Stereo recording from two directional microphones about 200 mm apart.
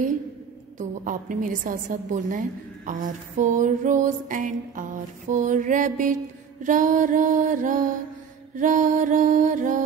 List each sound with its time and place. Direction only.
0.7 s a woman's voice: 40° right (ahead or behind)